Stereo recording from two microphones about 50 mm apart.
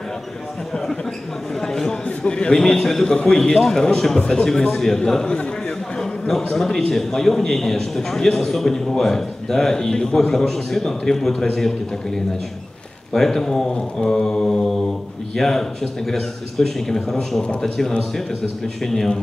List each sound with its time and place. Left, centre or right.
1.5 s a man's voice: centre
4.5 s a man's voice: centre